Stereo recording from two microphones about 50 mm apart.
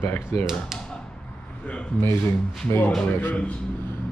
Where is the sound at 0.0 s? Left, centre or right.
Left.